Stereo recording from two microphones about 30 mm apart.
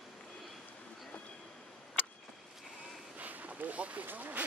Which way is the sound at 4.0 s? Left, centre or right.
Right.